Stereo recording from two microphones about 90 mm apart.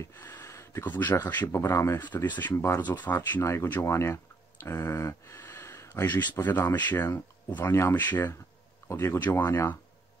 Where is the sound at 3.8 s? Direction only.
30° left (ahead or behind).